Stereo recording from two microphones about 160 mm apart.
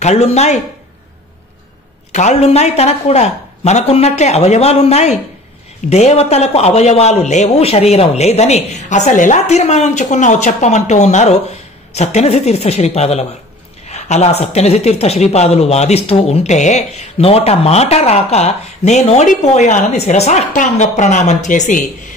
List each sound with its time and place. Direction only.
0.0 s speech: 45° left (ahead or behind)
2.1 s speech: 45° left (ahead or behind)